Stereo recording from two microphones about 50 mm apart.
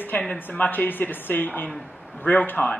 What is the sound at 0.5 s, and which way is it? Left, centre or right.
A man's voice, left.